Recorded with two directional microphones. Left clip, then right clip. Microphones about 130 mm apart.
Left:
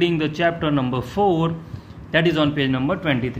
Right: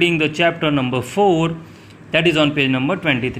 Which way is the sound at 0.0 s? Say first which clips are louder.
Right 4 dB; 10° right (ahead or behind).